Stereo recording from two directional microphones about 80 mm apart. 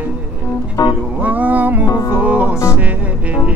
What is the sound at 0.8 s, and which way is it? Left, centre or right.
Music, left.